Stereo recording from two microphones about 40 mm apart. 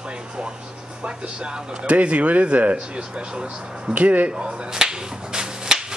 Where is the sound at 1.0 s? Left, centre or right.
Right.